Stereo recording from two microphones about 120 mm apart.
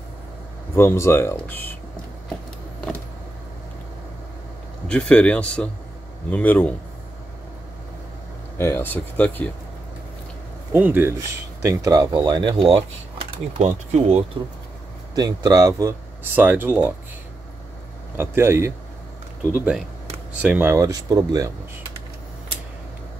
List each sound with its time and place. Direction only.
0.7 s speech: 20° left (ahead or behind)
4.8 s speech: 5° left (ahead or behind)
8.5 s speech: 20° left (ahead or behind)
10.7 s speech: 15° right (ahead or behind); by 14.2 s 60° right (ahead or behind)
15.1 s speech: 35° right (ahead or behind)
16.3 s speech: 15° right (ahead or behind)
18.1 s speech: 15° right (ahead or behind)
20.7 s speech: 30° right (ahead or behind)